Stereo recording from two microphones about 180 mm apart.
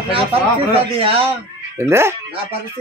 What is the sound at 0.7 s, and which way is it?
Speech, 30° right (ahead or behind).